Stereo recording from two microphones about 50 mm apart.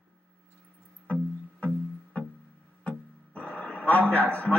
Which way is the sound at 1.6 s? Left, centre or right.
Left.